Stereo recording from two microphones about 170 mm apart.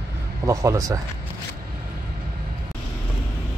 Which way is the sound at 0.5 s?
20° right (ahead or behind).